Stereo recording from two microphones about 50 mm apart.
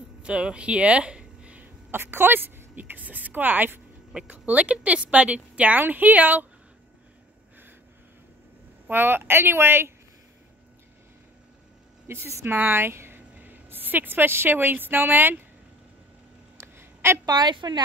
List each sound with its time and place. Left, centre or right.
0.2 s a sound: right
1.9 s speech: right
4.3 s a woman's voice: right
5.8 s speech: right
8.9 s a woman's voice: right
12.1 s a woman's voice: right
12.4 s a woman's voice: right
16.5 s a sound: right